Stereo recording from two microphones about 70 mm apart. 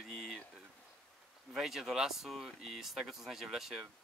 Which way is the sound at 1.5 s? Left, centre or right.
Centre.